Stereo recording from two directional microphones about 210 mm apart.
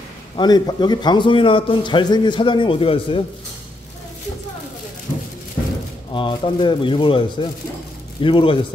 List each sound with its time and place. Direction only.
0.4 s a man's voice: 20° left (ahead or behind)
6.1 s a man's voice: 25° left (ahead or behind)